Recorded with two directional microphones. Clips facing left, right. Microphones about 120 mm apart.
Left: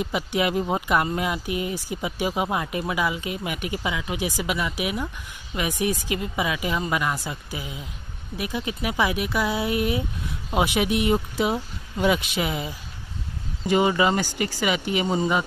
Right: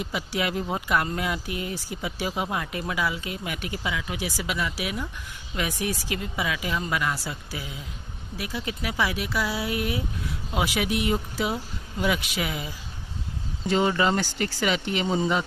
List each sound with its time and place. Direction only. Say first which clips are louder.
0.1 s speech: left 3 dB; 20° left (ahead or behind)
13.7 s speech: left 2 dB; 15° left (ahead or behind)